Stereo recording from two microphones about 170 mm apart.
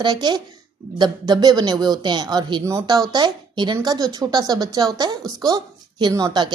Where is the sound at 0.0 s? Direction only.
25° right (ahead or behind).